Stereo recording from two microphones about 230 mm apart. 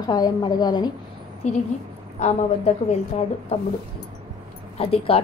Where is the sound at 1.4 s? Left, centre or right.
Left.